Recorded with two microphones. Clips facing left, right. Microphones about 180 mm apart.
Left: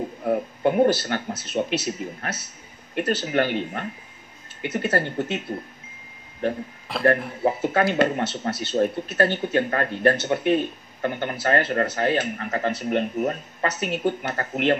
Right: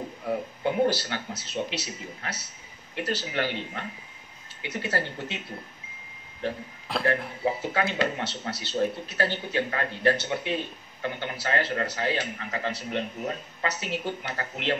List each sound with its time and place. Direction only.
0.2 s speech: 50° left (ahead or behind)
6.4 s speech: 50° left (ahead or behind)